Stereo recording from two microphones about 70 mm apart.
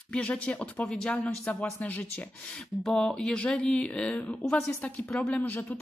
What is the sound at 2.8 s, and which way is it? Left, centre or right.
Speech, centre.